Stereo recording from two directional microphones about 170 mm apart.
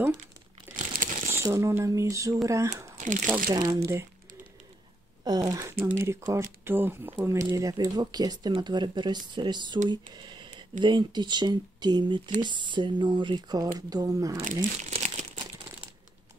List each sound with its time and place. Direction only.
0.7 s crumpling: 50° right (ahead or behind)
1.3 s speech: 15° right (ahead or behind)
3.0 s crumpling: 50° right (ahead or behind)
3.4 s speech: 20° right (ahead or behind)
5.2 s speech: 25° right (ahead or behind)
14.4 s speech: 50° right (ahead or behind)
14.9 s crumpling: 40° right (ahead or behind)